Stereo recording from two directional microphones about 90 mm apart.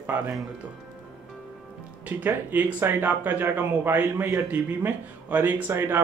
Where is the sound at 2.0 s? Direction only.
20° right (ahead or behind).